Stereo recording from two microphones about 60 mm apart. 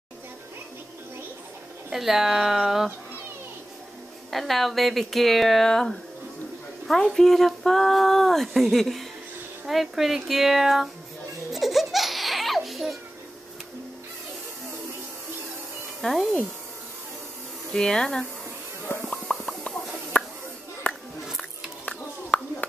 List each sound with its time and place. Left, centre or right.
1.9 s speech: centre
4.3 s speech: centre
11.5 s baby laughter: centre
16.0 s speech: centre
17.6 s speech: centre
19.0 s a sound: centre
20.1 s a sound: left
20.9 s music: left
21.4 s a sound: centre